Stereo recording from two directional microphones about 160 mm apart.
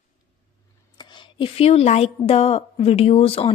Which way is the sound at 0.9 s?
30° left (ahead or behind).